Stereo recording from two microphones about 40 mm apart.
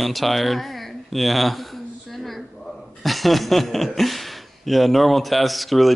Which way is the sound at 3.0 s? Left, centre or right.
Centre.